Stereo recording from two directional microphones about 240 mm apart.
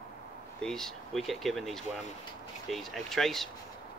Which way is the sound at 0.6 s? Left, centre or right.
Centre.